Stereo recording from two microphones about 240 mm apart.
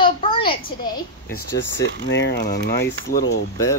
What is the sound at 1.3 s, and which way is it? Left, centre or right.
Speech, left.